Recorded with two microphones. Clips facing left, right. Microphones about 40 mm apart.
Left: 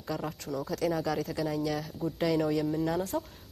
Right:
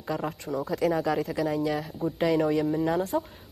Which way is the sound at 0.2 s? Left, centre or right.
Centre.